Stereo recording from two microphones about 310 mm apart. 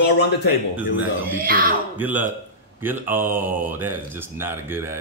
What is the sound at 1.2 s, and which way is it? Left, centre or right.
Speech, right.